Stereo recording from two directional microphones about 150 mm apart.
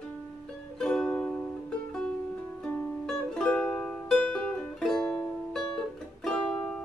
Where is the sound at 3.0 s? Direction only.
5° left (ahead or behind).